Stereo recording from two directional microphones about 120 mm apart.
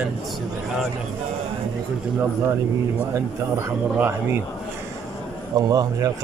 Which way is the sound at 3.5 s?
20° right (ahead or behind).